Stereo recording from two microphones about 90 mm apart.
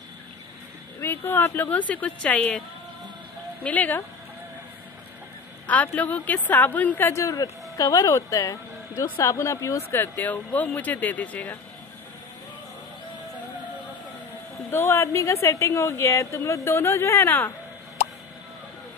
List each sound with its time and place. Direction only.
1.0 s speech: 25° left (ahead or behind)
3.6 s speech: 15° left (ahead or behind)
5.7 s speech: 15° left (ahead or behind)
7.1 s a woman's voice: 35° left (ahead or behind)
9.8 s speech: 25° left (ahead or behind)
14.7 s a woman's voice: 30° left (ahead or behind)